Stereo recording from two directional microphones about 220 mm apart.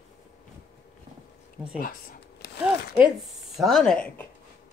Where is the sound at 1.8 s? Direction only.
40° left (ahead or behind).